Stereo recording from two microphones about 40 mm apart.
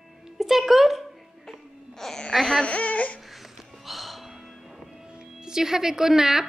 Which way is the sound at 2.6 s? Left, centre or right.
Left.